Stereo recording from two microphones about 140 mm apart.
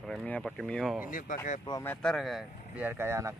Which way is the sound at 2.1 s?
Centre (ahead or behind).